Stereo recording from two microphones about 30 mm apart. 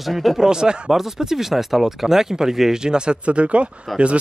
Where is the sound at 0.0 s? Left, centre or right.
Centre.